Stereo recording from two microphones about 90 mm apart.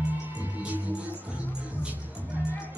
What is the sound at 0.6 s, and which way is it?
Music, 15° right (ahead or behind).